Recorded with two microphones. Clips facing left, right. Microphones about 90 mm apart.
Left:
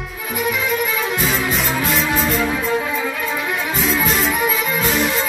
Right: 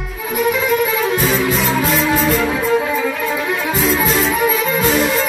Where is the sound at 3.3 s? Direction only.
15° right (ahead or behind).